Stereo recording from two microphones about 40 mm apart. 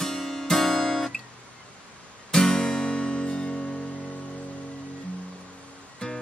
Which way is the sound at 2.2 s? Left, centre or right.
Centre.